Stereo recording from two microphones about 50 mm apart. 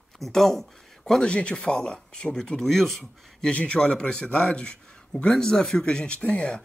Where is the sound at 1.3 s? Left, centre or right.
Left; by 3.5 s centre.